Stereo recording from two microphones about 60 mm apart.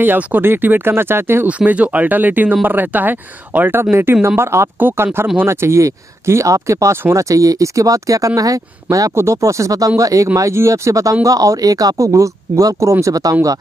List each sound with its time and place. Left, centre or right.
0.0 s speech: right
1.7 s speech: right
4.7 s speech: right
9.1 s speech: right
11.2 s speech: right
13.0 s speech: right